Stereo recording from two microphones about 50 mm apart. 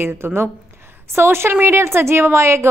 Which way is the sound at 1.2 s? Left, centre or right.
Right.